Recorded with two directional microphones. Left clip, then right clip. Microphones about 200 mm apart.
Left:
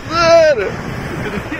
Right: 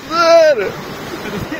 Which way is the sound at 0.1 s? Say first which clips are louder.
Even; 5° left (ahead or behind).